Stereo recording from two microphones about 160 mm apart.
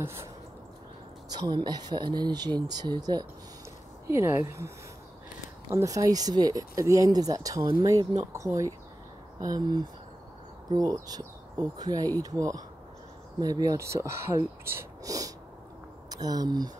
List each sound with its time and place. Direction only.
1.4 s speech: 25° right (ahead or behind)